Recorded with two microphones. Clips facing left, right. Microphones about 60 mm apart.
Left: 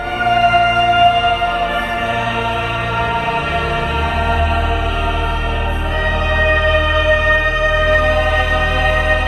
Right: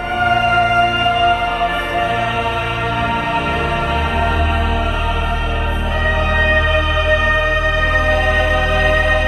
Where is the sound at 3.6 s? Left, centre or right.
Right.